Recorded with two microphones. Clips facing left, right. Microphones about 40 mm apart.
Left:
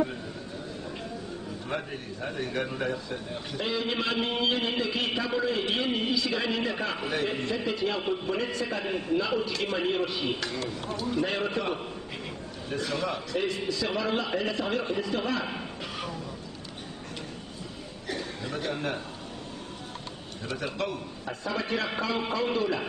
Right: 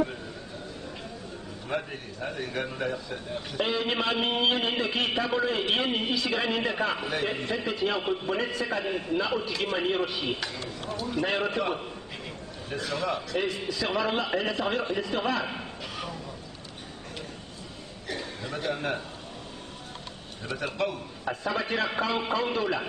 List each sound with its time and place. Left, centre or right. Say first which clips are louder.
1.7 s a man's voice: right 2 dB; centre
3.5 s a man's voice: right 2 dB; right; by 16.2 s centre
18.0 s chuckle: left 1 dB; centre
20.4 s a man's voice: right 2 dB; centre